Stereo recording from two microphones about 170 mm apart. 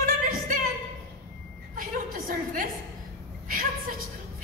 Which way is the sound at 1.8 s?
55° right (ahead or behind).